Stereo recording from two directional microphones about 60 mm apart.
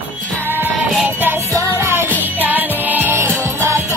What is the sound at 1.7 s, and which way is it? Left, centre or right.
Music, right.